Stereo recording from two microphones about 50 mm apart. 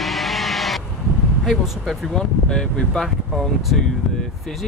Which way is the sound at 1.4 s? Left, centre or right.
Centre.